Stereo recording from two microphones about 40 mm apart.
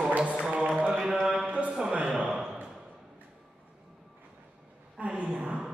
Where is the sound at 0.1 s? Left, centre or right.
Right; by 2.6 s centre.